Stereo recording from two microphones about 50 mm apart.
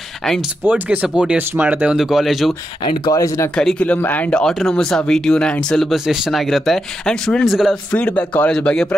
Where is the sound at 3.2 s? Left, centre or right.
Left.